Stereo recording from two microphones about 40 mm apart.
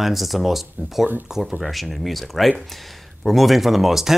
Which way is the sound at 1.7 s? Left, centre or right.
Centre.